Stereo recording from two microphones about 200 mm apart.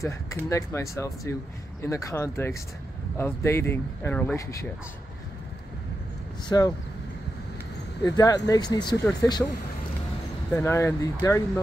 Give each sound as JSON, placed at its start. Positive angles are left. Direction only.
{"t": 0.0, "sound": "speech", "side_deg": 15}
{"t": 6.5, "sound": "speech", "side_deg": 15}
{"t": 8.0, "sound": "speech", "side_deg": 15}
{"t": 10.5, "sound": "speech", "side_deg": 15}